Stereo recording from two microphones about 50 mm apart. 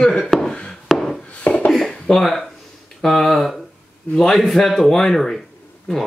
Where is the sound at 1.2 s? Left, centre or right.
Left.